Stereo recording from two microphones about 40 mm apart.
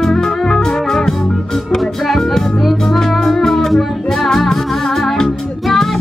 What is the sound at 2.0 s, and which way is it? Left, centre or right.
Music, centre.